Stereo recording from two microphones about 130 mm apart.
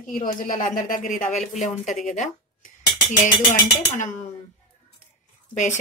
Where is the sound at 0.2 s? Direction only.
90° left.